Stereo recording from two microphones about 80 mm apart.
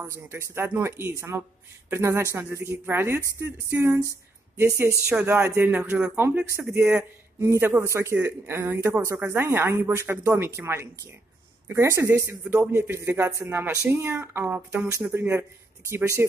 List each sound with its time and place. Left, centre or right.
0.0 s speech: right; by 6.2 s centre
6.2 s speech: right